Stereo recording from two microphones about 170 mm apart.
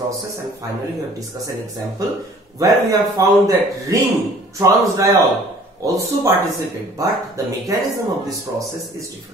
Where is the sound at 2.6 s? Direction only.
20° right (ahead or behind).